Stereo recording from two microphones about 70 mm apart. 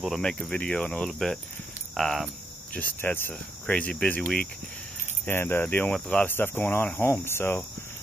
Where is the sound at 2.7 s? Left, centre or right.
Left.